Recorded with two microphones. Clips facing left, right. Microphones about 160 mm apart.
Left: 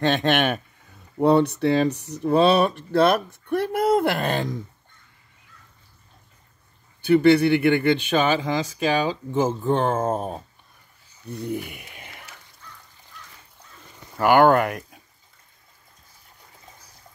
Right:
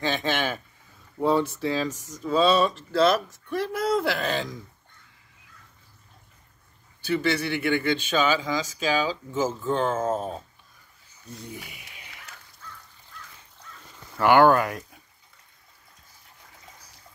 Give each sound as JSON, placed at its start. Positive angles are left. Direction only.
{"t": 0.0, "sound": "speech", "side_deg": 70}
{"t": 7.2, "sound": "speech", "side_deg": 60}
{"t": 11.3, "sound": "speech", "side_deg": 60}
{"t": 14.1, "sound": "speech", "side_deg": 45}